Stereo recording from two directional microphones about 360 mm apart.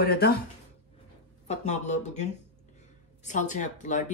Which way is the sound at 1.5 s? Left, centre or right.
Centre.